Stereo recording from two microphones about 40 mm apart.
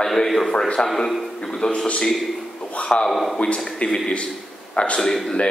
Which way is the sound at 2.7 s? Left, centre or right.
Left.